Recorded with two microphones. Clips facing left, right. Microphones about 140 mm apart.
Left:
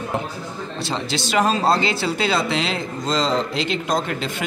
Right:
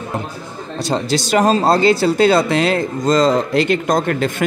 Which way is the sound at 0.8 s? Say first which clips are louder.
Right 8 dB; 40° right (ahead or behind).